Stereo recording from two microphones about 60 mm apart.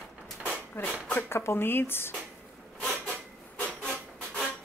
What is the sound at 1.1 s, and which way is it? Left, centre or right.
A woman's voice, left.